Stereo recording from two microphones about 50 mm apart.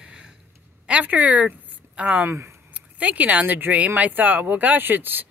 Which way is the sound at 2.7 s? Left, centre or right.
Right.